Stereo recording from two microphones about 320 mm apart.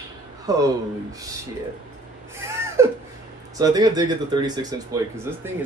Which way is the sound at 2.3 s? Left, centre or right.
Centre.